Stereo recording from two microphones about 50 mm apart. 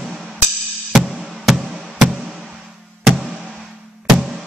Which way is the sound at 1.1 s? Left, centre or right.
Centre.